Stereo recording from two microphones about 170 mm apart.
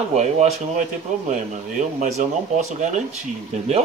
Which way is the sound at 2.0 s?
45° right (ahead or behind).